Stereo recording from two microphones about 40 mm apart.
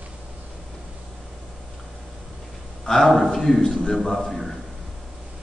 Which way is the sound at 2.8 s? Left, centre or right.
Centre.